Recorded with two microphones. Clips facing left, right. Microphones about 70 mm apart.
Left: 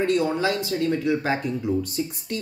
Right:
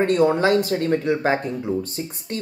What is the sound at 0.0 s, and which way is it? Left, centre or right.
Speech, right.